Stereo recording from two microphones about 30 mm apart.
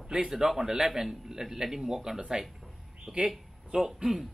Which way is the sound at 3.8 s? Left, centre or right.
Centre.